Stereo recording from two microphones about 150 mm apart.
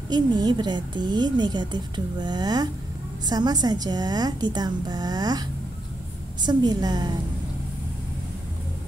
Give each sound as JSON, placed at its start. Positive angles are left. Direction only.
{"t": 0.1, "sound": "a woman's voice", "side_deg": -30}